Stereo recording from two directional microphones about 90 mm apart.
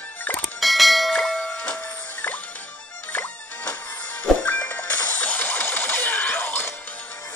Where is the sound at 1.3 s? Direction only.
15° left (ahead or behind).